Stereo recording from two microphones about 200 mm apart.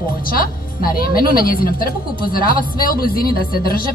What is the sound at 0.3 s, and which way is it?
Speech, 45° left (ahead or behind).